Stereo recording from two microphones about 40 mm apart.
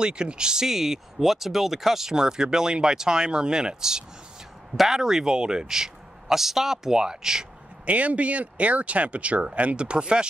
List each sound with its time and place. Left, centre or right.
0.0 s speech: right
7.8 s speech: right